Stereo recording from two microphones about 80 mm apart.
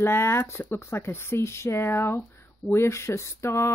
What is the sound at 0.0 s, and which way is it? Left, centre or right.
Speech, left.